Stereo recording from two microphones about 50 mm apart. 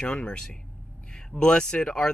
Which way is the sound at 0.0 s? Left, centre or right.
Centre.